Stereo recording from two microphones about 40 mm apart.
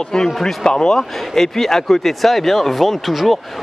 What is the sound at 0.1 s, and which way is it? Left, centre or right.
Speech, centre.